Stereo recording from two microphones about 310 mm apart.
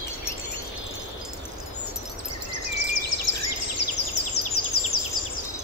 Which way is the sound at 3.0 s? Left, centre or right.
Left.